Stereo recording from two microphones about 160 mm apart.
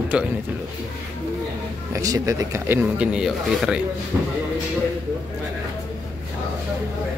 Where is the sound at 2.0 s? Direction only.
20° right (ahead or behind); by 3.8 s 5° right (ahead or behind).